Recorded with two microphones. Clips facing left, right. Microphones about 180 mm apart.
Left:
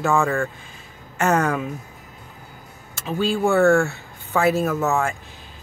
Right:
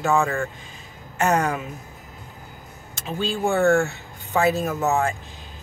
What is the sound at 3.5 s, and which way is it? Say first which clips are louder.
Speech: left 2 dB; 20° right (ahead or behind).